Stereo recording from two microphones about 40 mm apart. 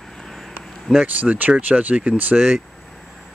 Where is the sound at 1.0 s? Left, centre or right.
Right.